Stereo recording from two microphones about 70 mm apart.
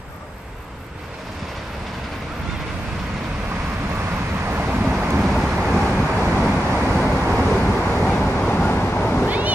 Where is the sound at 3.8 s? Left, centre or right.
Right.